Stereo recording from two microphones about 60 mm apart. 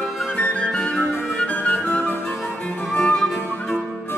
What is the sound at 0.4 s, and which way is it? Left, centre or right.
Flute, centre.